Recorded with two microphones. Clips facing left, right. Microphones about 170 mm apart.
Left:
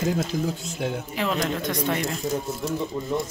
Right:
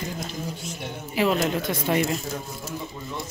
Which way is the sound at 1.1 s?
5° right (ahead or behind).